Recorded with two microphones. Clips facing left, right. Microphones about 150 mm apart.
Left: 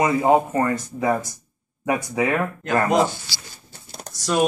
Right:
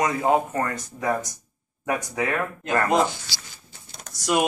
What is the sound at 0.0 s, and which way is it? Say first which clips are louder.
Speech: left 4 dB; 5° left (ahead or behind).